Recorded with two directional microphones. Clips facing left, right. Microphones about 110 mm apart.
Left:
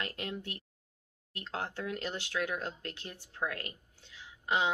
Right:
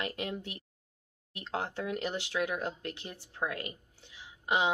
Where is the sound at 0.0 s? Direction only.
15° right (ahead or behind).